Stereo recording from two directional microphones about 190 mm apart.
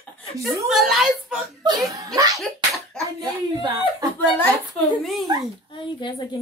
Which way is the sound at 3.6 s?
20° right (ahead or behind).